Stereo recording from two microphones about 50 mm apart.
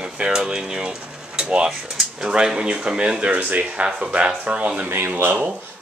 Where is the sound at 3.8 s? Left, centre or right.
Right.